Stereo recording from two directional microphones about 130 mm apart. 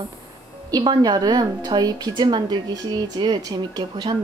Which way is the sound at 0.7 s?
30° right (ahead or behind).